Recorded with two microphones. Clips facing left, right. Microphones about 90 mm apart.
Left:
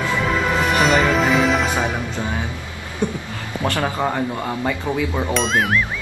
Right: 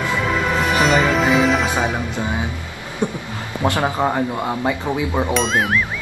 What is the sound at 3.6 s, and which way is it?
Speech, 20° right (ahead or behind).